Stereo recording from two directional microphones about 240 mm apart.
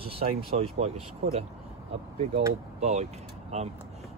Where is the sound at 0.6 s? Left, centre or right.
Right.